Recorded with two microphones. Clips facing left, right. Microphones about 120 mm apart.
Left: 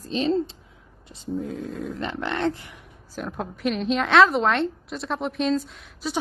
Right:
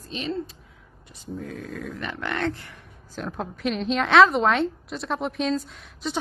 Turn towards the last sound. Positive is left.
turn(degrees=0)  # may be behind; listen again after turning